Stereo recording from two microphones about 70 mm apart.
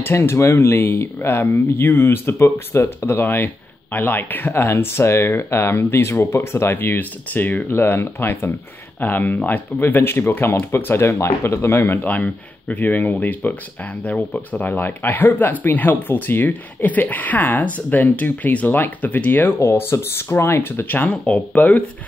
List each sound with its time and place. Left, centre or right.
0.1 s speech: left
12.0 s speech: left